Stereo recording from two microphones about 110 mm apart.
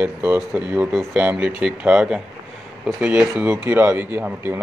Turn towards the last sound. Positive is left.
turn(degrees=-20)  # may be behind; listen again after turning